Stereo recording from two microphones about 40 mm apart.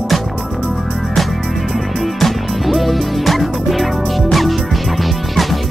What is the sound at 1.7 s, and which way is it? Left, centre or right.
Music, centre.